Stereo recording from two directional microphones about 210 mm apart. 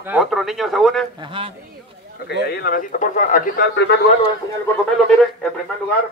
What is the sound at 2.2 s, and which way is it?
Speech, 50° left (ahead or behind).